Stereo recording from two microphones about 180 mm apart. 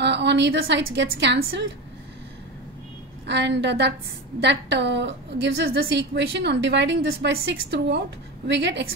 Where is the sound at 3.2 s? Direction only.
75° right (ahead or behind).